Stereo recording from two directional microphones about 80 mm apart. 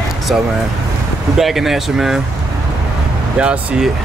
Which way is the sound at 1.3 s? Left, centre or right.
Centre.